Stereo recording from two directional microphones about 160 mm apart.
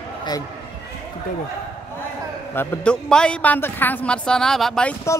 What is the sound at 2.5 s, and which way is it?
A woman's voice, 10° left (ahead or behind).